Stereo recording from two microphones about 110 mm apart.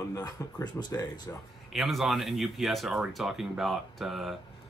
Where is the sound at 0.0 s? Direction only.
30° left (ahead or behind).